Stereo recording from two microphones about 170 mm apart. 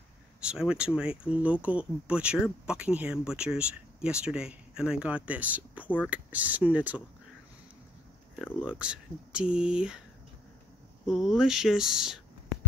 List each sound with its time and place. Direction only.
0.4 s speech: 5° right (ahead or behind)
8.6 s speech: 5° right (ahead or behind)
11.1 s speech: centre (ahead or behind)